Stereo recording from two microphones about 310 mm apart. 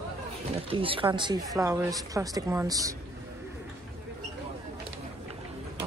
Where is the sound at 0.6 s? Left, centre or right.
Centre.